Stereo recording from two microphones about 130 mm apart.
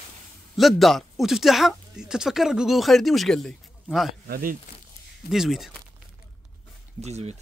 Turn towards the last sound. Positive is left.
turn(degrees=-55)  # may be behind; listen again after turning